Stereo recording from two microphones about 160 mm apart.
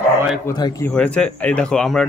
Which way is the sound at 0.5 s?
25° left (ahead or behind).